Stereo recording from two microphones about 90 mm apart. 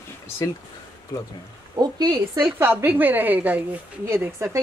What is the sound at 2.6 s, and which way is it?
A woman's voice, 25° right (ahead or behind).